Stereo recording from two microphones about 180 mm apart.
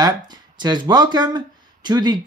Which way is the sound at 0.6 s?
25° right (ahead or behind).